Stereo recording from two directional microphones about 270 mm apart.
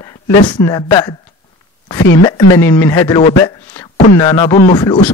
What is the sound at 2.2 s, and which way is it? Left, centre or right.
Speech, centre.